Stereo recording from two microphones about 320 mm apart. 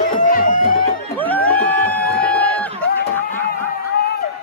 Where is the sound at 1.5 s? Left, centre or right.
Centre.